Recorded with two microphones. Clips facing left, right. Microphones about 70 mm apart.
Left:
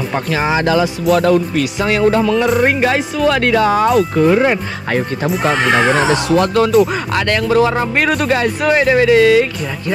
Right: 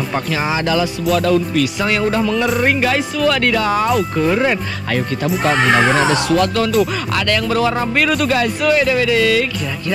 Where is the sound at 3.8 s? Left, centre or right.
Left.